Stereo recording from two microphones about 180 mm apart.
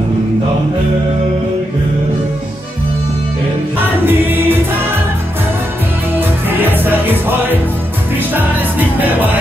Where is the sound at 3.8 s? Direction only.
10° right (ahead or behind).